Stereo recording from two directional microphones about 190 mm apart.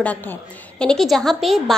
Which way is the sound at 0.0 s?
10° left (ahead or behind).